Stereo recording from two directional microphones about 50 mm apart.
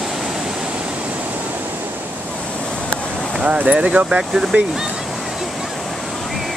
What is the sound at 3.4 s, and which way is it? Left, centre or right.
Speech, right.